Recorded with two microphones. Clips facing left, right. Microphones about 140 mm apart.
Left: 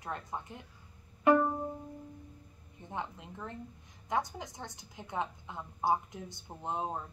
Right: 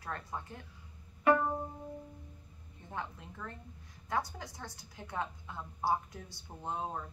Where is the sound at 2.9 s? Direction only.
20° left (ahead or behind).